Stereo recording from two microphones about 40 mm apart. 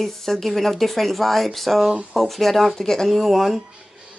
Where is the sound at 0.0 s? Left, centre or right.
Centre.